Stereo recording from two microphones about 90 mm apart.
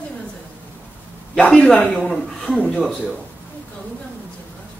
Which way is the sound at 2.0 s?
5° left (ahead or behind).